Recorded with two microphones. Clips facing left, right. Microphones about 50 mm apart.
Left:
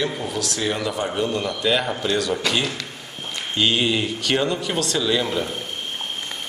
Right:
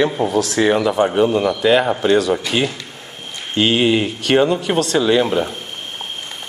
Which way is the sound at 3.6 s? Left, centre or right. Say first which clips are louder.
Right 6 dB; right.